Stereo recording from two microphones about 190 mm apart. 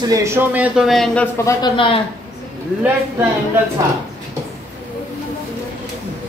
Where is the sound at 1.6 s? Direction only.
25° left (ahead or behind).